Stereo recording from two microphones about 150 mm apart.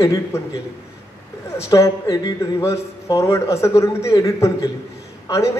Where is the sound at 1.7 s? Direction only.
25° left (ahead or behind).